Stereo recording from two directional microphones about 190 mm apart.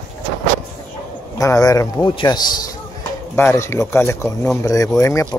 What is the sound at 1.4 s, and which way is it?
A man's voice, 15° left (ahead or behind).